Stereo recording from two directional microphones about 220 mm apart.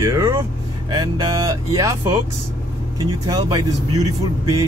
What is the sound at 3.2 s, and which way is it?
Speech, 20° right (ahead or behind).